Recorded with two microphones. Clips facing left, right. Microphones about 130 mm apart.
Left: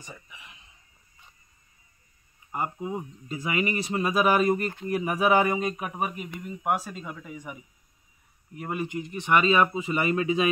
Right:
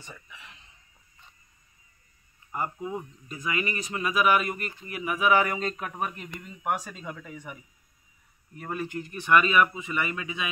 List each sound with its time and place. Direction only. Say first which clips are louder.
0.0 s speech: left 1 dB; 15° left (ahead or behind)
2.5 s speech: left 1 dB; 20° left (ahead or behind)